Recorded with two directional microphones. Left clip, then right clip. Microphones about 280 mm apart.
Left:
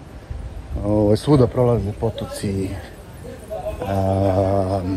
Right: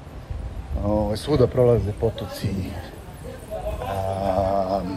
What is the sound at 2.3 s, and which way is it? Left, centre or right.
Speech, centre.